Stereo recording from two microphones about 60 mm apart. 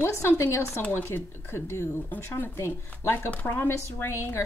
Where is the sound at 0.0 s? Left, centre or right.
Left.